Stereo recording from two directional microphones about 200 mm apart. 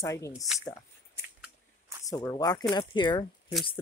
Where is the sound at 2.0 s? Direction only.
15° left (ahead or behind).